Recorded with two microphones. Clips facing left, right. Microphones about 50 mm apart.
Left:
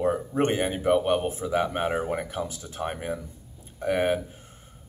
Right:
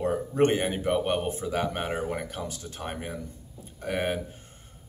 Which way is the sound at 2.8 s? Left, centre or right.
Centre.